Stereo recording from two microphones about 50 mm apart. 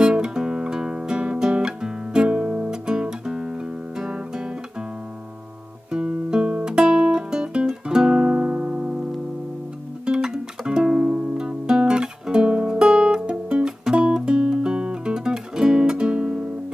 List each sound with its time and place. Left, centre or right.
0.0 s music: centre
5.9 s guitar: centre
7.8 s music: centre
10.0 s music: centre